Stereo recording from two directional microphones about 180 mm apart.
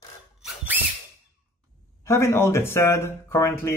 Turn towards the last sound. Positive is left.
turn(degrees=15)  # may be behind; listen again after turning